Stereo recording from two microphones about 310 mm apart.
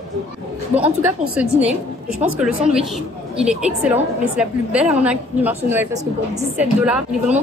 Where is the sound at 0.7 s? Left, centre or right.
Centre.